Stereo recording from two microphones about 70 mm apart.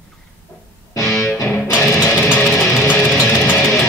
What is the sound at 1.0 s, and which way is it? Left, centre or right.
Music, centre.